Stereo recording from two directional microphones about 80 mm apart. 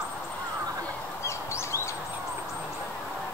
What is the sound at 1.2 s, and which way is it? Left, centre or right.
Bird, left.